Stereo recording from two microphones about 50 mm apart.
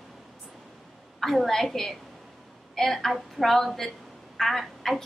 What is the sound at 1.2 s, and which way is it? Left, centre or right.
A woman's voice, centre.